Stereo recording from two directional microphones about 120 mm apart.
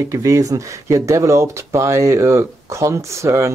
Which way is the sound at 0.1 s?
25° right (ahead or behind).